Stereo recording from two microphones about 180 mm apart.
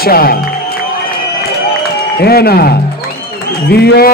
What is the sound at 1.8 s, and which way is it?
Music, 60° left (ahead or behind).